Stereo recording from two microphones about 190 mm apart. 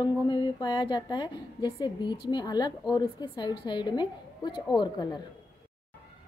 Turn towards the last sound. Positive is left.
turn(degrees=25)  # may be behind; listen again after turning